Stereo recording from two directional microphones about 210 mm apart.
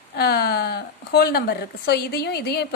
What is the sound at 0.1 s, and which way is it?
Speech, 50° left (ahead or behind).